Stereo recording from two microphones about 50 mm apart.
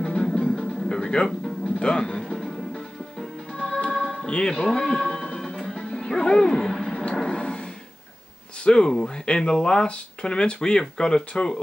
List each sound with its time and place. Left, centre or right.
0.0 s music: centre
4.3 s speech: centre
4.6 s music: centre
6.7 s a sound: centre
8.6 s speech: centre